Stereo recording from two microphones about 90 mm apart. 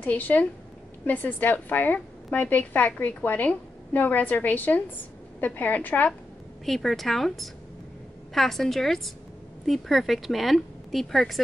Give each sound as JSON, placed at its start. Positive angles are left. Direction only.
{"t": 0.0, "sound": "a woman's voice", "side_deg": 15}
{"t": 6.6, "sound": "a woman's voice", "side_deg": 0}